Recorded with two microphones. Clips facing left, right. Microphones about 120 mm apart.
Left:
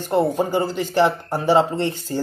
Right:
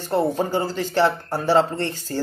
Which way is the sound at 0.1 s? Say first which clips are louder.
Left 2 dB; 10° left (ahead or behind).